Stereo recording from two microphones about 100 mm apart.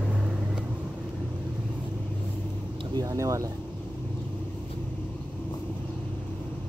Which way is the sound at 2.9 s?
35° right (ahead or behind).